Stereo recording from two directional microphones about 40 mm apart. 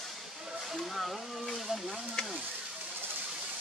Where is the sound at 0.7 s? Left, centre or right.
Centre.